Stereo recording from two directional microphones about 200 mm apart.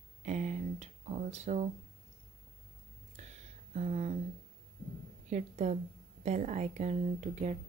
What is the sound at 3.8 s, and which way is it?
Speech, 35° right (ahead or behind).